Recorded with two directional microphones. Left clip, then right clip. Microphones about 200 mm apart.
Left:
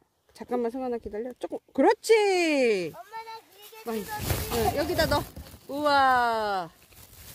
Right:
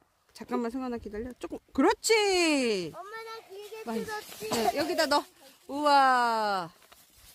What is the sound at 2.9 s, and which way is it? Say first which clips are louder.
Children playing: left 1 dB; 10° right (ahead or behind).